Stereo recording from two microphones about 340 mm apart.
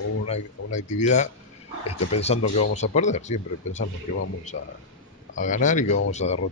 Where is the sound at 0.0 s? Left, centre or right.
Left.